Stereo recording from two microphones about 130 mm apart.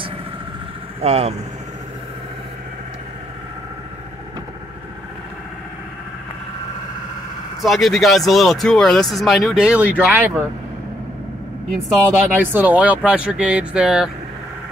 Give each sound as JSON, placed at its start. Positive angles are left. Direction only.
{"t": 1.0, "sound": "speech", "side_deg": -55}
{"t": 7.6, "sound": "speech", "side_deg": 0}
{"t": 12.3, "sound": "speech", "side_deg": -15}